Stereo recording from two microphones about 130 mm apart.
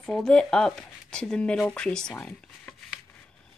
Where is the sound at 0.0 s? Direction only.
5° left (ahead or behind).